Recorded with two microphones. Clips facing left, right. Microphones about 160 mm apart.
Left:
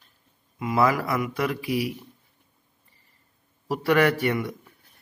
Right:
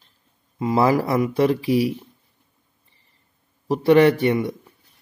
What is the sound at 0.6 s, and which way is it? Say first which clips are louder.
Speech: right 4 dB; 30° right (ahead or behind).